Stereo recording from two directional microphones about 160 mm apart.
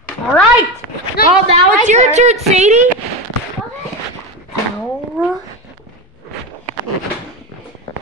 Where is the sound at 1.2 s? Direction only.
70° left (ahead or behind).